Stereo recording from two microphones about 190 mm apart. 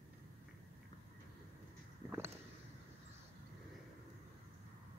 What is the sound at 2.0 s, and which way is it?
Vehicle, 15° right (ahead or behind).